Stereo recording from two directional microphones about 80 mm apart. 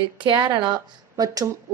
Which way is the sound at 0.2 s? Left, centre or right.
Right.